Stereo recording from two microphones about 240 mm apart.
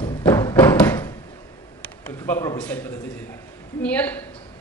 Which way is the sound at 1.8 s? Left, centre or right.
Centre.